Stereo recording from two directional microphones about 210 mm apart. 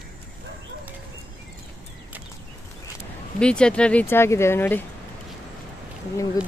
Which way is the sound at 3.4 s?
5° left (ahead or behind).